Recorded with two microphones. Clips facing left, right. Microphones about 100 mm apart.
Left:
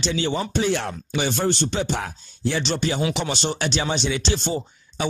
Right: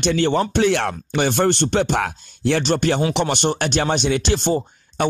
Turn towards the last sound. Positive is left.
turn(degrees=-50)  # may be behind; listen again after turning